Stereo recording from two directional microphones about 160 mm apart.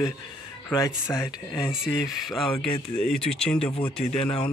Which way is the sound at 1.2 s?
20° left (ahead or behind).